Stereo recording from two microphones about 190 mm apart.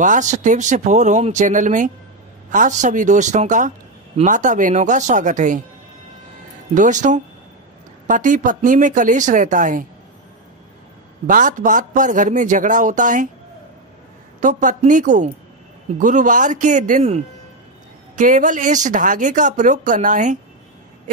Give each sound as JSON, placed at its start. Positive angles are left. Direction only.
{"t": 0.0, "sound": "speech", "side_deg": -40}
{"t": 6.7, "sound": "speech", "side_deg": -40}
{"t": 11.2, "sound": "speech", "side_deg": -45}
{"t": 14.4, "sound": "speech", "side_deg": -40}